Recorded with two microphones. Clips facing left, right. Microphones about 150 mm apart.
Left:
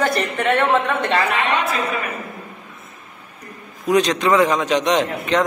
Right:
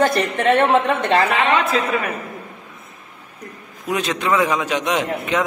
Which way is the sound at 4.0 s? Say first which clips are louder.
Left 3 dB; 10° right (ahead or behind).